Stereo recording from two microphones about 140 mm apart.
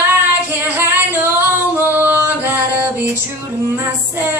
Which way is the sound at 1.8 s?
15° right (ahead or behind).